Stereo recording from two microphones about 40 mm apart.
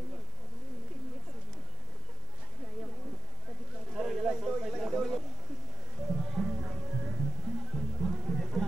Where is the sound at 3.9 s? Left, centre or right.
Right.